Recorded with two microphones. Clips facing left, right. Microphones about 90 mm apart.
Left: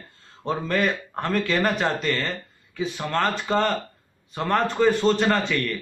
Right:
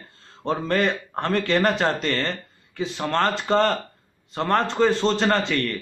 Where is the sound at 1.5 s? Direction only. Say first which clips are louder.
Right 3 dB; 30° right (ahead or behind).